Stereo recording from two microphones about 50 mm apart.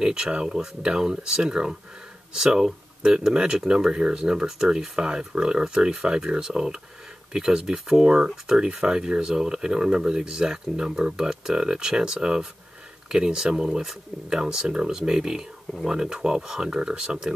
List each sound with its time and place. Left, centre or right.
0.0 s speech: centre